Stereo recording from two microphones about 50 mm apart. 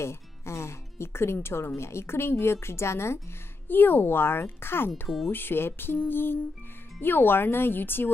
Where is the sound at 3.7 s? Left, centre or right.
Left.